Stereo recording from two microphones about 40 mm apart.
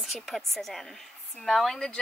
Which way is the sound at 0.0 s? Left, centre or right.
Centre.